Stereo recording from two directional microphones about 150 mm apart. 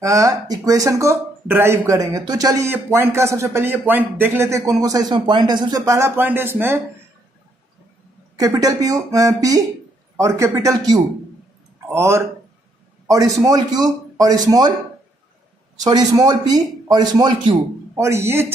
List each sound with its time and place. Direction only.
0.0 s speech: 20° right (ahead or behind)
8.4 s speech: 25° right (ahead or behind)
13.4 s speech: 25° right (ahead or behind)
15.8 s speech: 25° right (ahead or behind)